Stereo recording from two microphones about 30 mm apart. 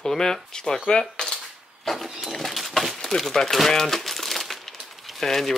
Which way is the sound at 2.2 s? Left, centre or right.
Centre.